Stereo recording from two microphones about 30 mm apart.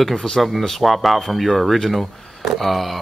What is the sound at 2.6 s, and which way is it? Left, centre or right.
Speech, centre.